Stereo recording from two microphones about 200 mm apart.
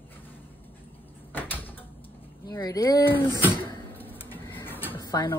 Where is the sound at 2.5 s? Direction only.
15° left (ahead or behind).